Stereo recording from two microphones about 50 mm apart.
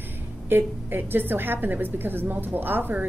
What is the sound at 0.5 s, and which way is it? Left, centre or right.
A woman's voice, right.